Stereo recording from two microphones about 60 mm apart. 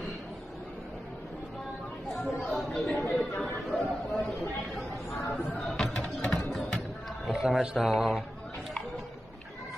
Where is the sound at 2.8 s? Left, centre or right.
Left.